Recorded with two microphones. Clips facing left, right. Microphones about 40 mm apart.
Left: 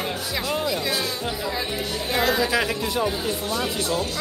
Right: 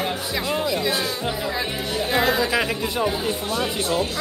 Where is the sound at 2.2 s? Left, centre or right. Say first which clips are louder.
Even; centre.